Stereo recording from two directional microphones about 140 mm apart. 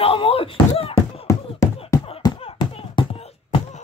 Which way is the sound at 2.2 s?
30° left (ahead or behind).